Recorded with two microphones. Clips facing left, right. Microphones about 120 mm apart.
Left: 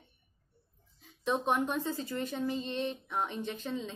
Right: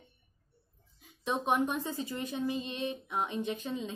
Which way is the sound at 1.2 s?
15° right (ahead or behind).